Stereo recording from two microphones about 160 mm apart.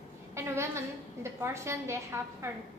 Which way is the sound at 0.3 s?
15° right (ahead or behind).